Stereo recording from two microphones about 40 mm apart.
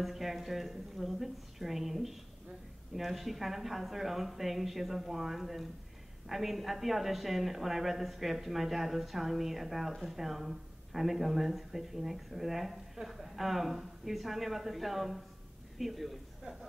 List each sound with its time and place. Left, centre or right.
0.0 s a woman's voice: centre